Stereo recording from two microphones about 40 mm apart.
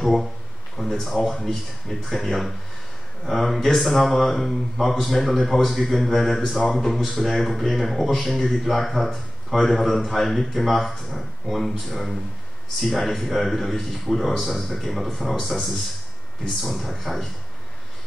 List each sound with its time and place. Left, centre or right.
0.0 s a man's voice: centre
6.6 s speech: centre
6.9 s a man's voice: centre